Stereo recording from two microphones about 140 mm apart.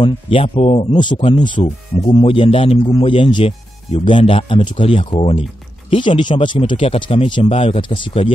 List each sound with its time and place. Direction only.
0.0 s speech: 40° left (ahead or behind)